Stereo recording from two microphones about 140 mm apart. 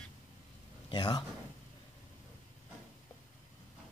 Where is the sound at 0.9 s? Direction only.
35° left (ahead or behind).